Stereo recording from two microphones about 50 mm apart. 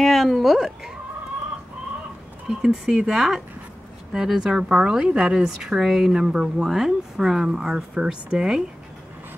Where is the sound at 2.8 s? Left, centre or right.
Centre.